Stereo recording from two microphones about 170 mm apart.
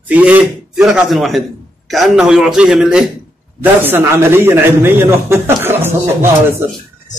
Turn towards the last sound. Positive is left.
turn(degrees=-15)  # may be behind; listen again after turning